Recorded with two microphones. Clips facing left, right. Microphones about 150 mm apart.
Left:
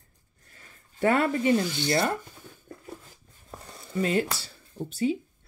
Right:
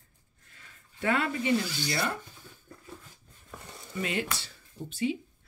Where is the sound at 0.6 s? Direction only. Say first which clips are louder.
Left 9 dB; 40° left (ahead or behind).